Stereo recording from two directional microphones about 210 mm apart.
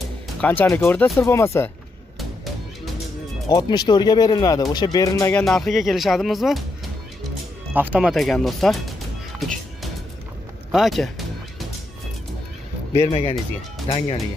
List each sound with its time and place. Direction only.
0.4 s speech: 10° left (ahead or behind)
2.1 s a sound: centre (ahead or behind)
3.4 s speech: 20° left (ahead or behind)
5.4 s speech: centre (ahead or behind)
7.7 s speech: 5° right (ahead or behind)
10.7 s speech: centre (ahead or behind)
13.1 s speech: 25° left (ahead or behind)